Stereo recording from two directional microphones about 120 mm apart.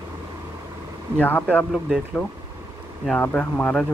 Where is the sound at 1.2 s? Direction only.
15° left (ahead or behind).